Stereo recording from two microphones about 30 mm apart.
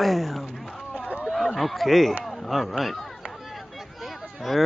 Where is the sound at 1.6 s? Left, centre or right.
Centre.